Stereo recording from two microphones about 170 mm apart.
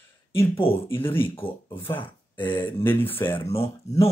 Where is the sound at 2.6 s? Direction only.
15° left (ahead or behind).